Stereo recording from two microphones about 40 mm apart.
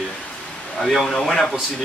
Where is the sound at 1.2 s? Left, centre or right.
Centre.